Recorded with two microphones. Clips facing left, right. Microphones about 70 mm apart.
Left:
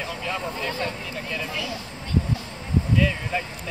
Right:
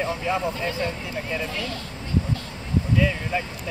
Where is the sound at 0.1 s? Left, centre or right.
Centre.